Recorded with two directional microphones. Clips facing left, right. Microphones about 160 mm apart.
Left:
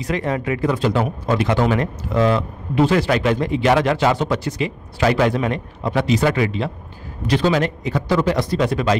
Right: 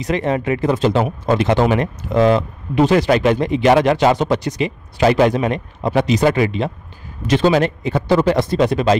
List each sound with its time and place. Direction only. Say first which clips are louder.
0.0 s speech: right 3 dB; 25° right (ahead or behind)